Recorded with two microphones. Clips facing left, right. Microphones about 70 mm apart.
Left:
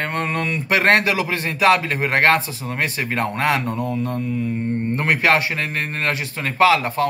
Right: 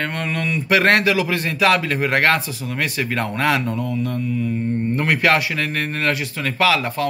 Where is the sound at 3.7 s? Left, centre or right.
Left.